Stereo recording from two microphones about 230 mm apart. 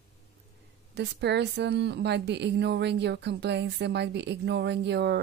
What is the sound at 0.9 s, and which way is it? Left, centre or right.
A woman's voice, right.